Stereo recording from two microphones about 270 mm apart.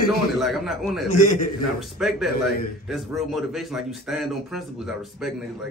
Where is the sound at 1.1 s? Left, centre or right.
Left.